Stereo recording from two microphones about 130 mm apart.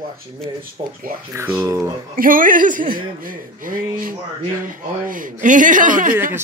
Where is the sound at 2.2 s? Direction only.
90° right.